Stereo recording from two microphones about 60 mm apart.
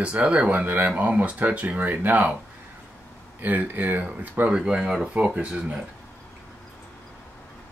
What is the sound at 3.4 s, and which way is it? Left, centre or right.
Speech, right.